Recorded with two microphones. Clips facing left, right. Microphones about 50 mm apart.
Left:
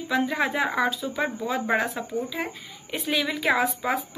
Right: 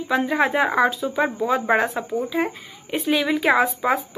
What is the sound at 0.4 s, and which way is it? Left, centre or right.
Speech, right.